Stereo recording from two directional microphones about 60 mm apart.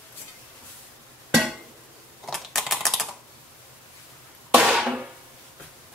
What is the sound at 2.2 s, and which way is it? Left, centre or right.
Typing, centre.